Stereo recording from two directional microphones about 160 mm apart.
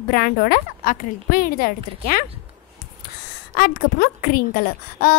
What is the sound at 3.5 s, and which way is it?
A woman's voice, 65° left (ahead or behind).